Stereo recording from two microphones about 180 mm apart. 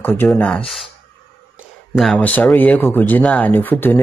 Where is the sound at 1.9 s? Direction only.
Centre (ahead or behind).